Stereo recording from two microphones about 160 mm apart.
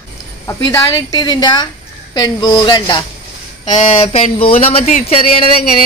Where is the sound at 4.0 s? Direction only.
35° left (ahead or behind).